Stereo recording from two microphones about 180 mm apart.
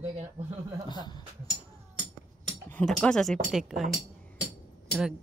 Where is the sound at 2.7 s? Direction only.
5° left (ahead or behind).